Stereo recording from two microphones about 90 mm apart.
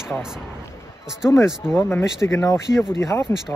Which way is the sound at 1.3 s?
30° left (ahead or behind).